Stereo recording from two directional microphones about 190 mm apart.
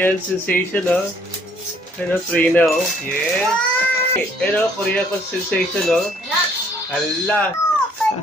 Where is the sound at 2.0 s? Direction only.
10° left (ahead or behind).